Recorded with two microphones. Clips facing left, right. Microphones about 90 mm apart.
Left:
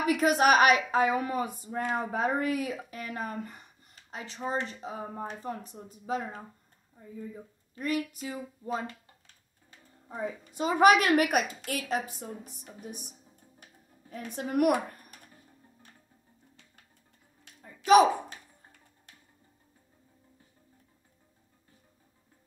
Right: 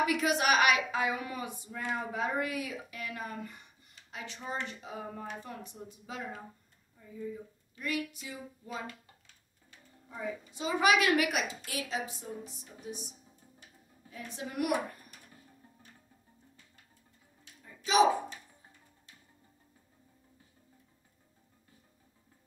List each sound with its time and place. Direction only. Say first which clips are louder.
0.0 s a woman's voice: left 5 dB; 40° left (ahead or behind)
7.7 s a woman's voice: left 4 dB; 40° left (ahead or behind)
10.0 s a woman's voice: left 3 dB; 40° left (ahead or behind)
14.1 s a woman's voice: left 7 dB; 45° left (ahead or behind)
17.6 s a sound: left 6 dB; 55° left (ahead or behind)